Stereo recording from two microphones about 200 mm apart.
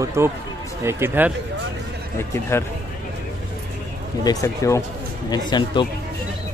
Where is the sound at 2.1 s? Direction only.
10° left (ahead or behind).